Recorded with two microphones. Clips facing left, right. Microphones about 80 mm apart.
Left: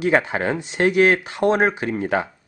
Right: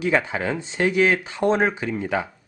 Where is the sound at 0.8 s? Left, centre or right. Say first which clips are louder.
Left 3 dB; left.